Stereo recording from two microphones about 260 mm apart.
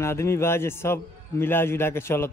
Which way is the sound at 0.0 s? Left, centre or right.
Centre.